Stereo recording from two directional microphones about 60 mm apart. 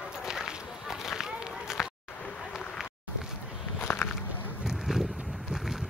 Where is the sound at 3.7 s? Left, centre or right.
Left.